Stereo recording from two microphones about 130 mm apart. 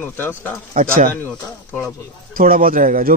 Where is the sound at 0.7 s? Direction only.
90° right.